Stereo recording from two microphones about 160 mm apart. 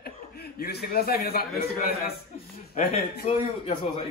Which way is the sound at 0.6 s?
75° left (ahead or behind).